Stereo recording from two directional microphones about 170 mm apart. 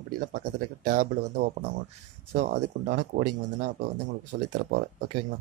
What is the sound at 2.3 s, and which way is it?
Speech, 40° right (ahead or behind).